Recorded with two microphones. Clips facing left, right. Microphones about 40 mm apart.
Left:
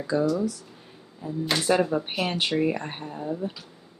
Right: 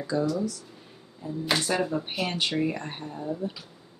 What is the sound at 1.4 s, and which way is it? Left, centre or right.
Speech, centre.